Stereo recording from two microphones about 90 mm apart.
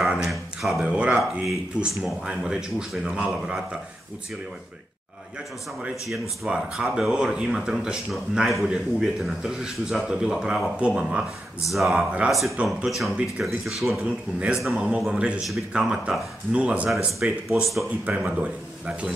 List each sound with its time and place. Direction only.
0.0 s a sound: centre (ahead or behind)
0.8 s speech: 10° right (ahead or behind)
6.0 s speech: 5° right (ahead or behind)
12.3 s speech: centre (ahead or behind)
14.0 s speech: 10° right (ahead or behind)
17.8 s speech: 15° right (ahead or behind)